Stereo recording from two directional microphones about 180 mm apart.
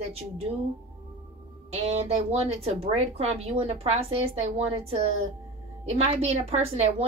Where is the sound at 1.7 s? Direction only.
35° right (ahead or behind).